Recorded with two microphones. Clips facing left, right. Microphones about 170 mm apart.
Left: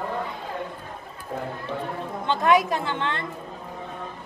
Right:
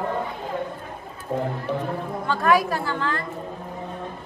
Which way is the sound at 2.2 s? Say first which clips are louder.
Even; 20° left (ahead or behind).